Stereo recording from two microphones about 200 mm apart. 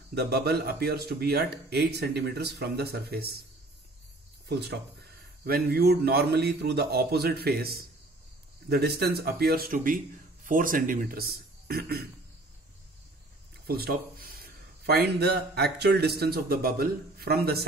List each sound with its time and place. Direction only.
0.1 s a man's voice: 55° right (ahead or behind)
4.5 s a man's voice: 55° right (ahead or behind)
13.7 s a man's voice: 50° right (ahead or behind)